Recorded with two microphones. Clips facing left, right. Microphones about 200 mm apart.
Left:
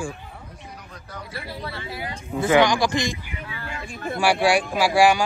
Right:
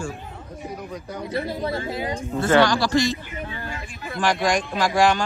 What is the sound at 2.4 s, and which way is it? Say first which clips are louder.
Speech: even; 15° left (ahead or behind).